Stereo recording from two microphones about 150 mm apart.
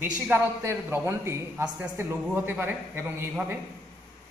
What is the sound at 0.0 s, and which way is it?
A man's voice, 15° right (ahead or behind).